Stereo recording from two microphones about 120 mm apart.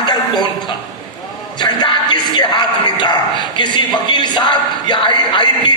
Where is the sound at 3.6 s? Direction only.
40° left (ahead or behind).